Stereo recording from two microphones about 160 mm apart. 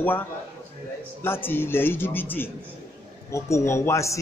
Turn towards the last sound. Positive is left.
turn(degrees=20)  # may be behind; listen again after turning